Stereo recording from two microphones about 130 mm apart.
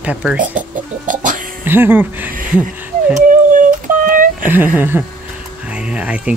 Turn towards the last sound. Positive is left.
turn(degrees=-10)  # may be behind; listen again after turning